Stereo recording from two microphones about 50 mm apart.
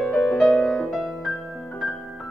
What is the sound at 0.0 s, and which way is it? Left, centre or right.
Music, centre.